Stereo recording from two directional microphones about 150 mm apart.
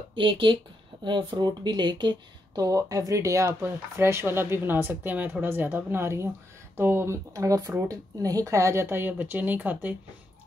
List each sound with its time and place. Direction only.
0.1 s a woman's voice: 35° right (ahead or behind); by 9.9 s 10° right (ahead or behind)